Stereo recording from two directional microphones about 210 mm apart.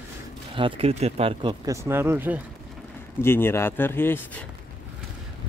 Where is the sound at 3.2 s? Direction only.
10° left (ahead or behind).